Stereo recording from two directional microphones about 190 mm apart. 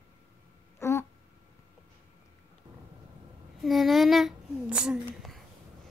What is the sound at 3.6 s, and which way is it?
A child's voice, centre (ahead or behind).